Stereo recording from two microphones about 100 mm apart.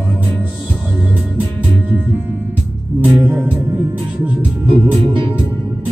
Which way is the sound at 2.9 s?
15° right (ahead or behind).